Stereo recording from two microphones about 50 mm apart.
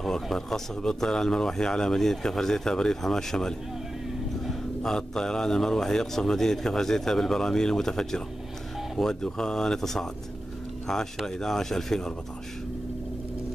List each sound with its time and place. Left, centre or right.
0.0 s speech: centre
11.2 s speech: centre